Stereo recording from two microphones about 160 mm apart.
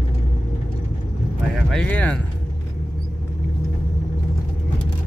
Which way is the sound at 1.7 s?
5° left (ahead or behind).